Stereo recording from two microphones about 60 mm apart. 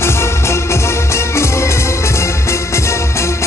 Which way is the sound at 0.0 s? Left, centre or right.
Left.